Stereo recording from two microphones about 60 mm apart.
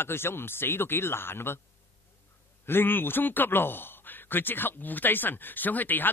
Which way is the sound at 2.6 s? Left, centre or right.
Left.